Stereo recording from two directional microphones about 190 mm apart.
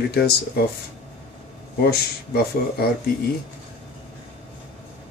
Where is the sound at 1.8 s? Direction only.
55° left (ahead or behind).